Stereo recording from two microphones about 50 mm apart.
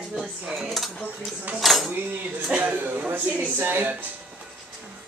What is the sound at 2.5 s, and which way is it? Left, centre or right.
Speech, right.